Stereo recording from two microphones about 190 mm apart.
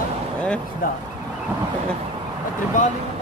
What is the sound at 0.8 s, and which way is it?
Speech, 50° left (ahead or behind).